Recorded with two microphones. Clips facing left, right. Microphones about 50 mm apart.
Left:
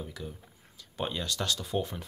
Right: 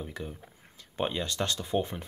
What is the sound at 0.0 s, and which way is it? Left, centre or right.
Speech, right.